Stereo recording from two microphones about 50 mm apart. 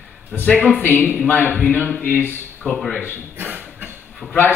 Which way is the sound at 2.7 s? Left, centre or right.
Centre.